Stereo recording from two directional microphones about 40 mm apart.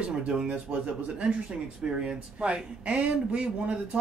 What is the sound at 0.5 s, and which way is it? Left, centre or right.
Speech, right.